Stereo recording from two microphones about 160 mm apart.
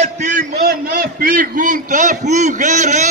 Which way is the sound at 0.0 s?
50° right (ahead or behind).